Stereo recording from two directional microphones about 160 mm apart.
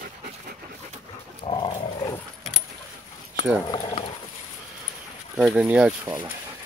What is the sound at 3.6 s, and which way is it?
Speech, 30° left (ahead or behind).